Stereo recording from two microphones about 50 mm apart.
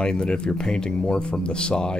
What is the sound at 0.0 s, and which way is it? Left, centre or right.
Speech, centre.